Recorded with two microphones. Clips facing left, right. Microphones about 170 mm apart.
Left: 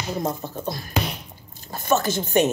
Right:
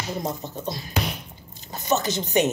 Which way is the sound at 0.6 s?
50° left (ahead or behind).